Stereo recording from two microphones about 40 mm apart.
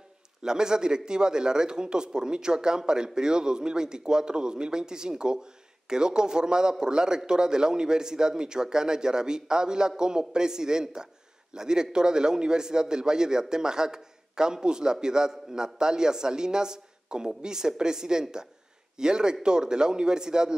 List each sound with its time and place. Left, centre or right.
0.4 s a man's voice: centre